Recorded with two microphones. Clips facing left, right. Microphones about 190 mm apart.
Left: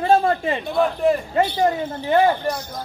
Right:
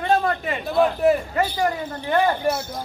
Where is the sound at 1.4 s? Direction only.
25° left (ahead or behind).